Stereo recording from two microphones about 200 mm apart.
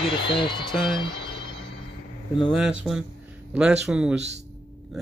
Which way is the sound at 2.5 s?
Centre (ahead or behind).